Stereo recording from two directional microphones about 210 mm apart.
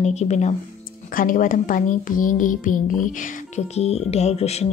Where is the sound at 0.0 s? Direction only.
30° left (ahead or behind).